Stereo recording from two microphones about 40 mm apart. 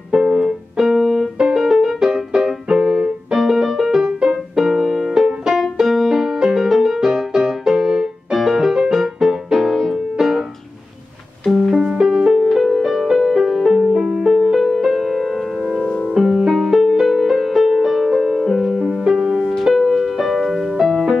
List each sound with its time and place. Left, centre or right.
0.1 s keyboard: centre
3.3 s music: centre
11.7 s music: centre
12.3 s music: centre
19.2 s music: centre
19.7 s music: centre